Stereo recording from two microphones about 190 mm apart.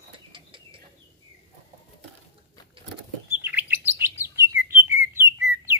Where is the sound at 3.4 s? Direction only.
10° right (ahead or behind).